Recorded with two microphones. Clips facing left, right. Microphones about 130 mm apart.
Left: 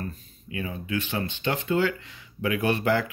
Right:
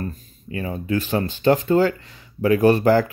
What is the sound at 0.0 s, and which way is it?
Speech, 40° right (ahead or behind).